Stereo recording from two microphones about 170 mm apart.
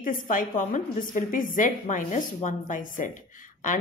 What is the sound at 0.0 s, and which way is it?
A woman's voice, 55° left (ahead or behind).